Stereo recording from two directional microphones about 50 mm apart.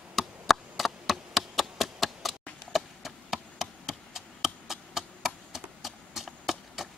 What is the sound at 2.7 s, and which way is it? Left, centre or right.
Chop, centre.